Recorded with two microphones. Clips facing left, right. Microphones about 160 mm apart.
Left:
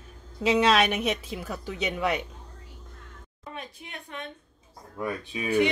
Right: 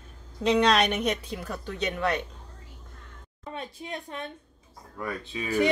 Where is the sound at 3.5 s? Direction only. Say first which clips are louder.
Right 5 dB; 30° right (ahead or behind).